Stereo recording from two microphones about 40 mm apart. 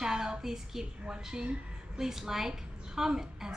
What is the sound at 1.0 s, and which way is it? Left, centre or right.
A woman's voice, right.